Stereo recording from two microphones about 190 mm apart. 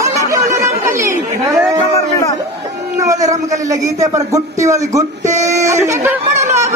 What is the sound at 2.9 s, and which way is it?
Speech, 20° right (ahead or behind).